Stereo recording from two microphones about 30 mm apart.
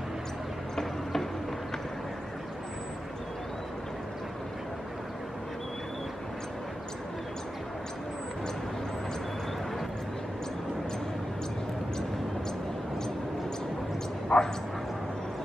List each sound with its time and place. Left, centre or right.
14.3 s bow-wow: left